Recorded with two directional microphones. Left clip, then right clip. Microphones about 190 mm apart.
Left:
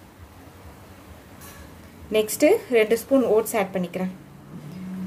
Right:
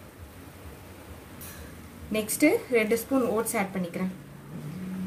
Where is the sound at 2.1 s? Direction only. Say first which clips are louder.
Left 6 dB; 40° left (ahead or behind).